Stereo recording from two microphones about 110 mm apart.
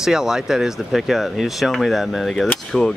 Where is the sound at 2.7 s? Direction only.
5° left (ahead or behind).